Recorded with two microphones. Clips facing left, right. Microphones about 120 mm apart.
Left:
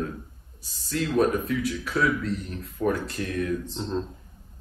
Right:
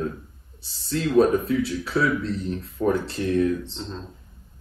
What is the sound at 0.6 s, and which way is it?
A man's voice, 30° right (ahead or behind).